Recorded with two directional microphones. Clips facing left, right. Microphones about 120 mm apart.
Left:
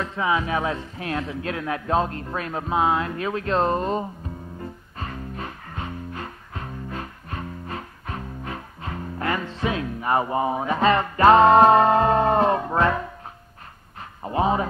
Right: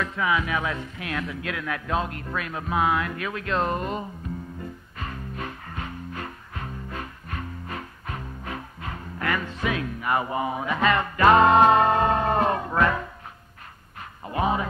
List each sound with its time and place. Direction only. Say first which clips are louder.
0.0 s speech: left 1 dB; 30° left (ahead or behind)
9.2 s speech: left 2 dB; 30° left (ahead or behind)
14.2 s speech: left 3 dB; 30° left (ahead or behind)